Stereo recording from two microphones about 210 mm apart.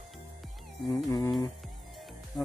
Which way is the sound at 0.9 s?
15° left (ahead or behind).